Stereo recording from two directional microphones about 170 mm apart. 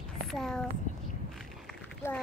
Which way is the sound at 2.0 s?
15° left (ahead or behind).